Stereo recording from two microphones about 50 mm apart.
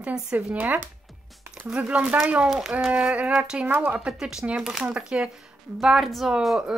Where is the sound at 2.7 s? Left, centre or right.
Right; by 3.7 s centre.